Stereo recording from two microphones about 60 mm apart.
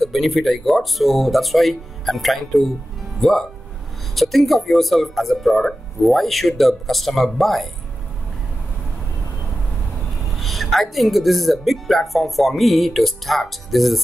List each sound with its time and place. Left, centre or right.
0.0 s speech: centre
10.3 s speech: centre